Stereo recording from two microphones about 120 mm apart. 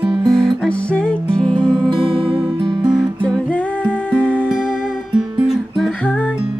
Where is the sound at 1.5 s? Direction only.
40° right (ahead or behind).